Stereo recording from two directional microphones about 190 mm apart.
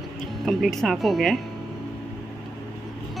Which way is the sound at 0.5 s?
Centre (ahead or behind).